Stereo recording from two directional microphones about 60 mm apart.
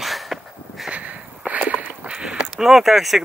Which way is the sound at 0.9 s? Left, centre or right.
Right.